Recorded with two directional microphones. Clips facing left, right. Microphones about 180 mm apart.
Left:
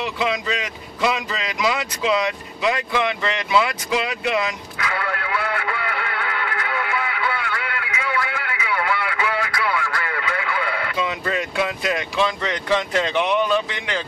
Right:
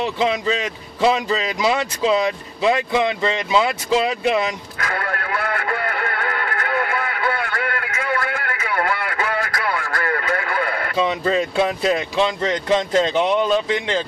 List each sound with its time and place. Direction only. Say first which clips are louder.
0.0 s a man's voice: right 4 dB; 25° right (ahead or behind)
4.7 s radio: right 1 dB; 45° right (ahead or behind)
11.0 s a man's voice: right 7 dB; 30° right (ahead or behind)